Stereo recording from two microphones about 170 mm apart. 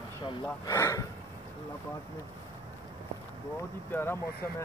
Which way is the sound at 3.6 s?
15° left (ahead or behind).